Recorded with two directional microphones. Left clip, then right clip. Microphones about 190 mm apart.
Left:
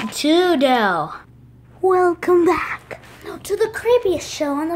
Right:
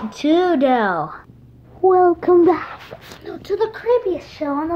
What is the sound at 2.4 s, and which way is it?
Speech, 5° left (ahead or behind).